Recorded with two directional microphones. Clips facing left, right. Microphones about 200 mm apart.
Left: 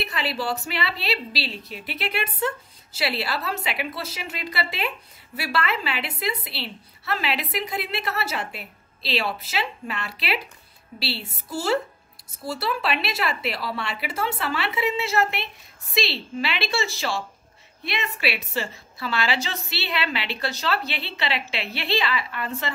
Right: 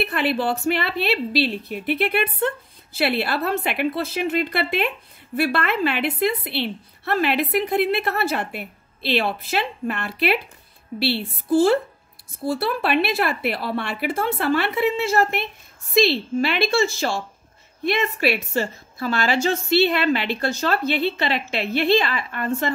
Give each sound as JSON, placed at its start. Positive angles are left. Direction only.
{"t": 0.0, "sound": "a woman's voice", "side_deg": -55}